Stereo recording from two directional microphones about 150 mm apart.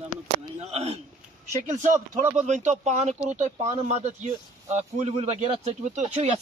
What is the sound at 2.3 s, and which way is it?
Speech, 50° right (ahead or behind).